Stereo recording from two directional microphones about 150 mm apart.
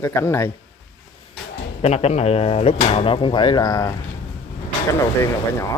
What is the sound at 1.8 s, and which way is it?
Speech, 45° left (ahead or behind).